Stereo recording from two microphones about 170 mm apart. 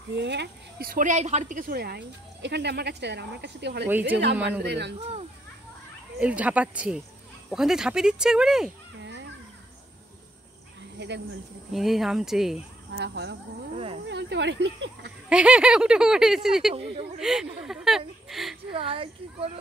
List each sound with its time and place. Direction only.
0.1 s a woman's voice: 90° right
3.8 s speech: 10° right (ahead or behind)
4.6 s speech: 85° right
6.1 s speech: 10° right (ahead or behind)
9.0 s children playing: 90° right
11.0 s speech: 90° right
11.7 s speech: centre (ahead or behind)
12.9 s speech: 90° right
15.2 s speech: 5° right (ahead or behind)
18.7 s a child's voice: 30° right (ahead or behind)